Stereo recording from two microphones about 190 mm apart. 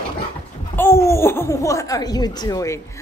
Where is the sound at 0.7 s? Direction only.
15° left (ahead or behind).